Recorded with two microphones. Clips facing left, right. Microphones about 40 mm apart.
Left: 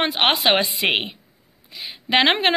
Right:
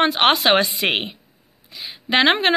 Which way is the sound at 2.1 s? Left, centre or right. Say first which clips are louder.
Right 1 dB; left.